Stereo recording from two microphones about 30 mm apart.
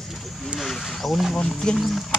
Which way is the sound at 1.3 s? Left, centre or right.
Left.